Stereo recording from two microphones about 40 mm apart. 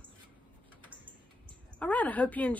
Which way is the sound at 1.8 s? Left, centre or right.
Left.